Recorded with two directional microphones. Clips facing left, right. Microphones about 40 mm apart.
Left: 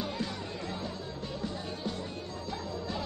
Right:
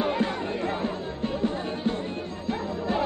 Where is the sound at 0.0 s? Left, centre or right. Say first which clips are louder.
Right 10 dB; right.